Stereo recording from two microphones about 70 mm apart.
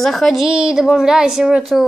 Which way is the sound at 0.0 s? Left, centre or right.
Centre.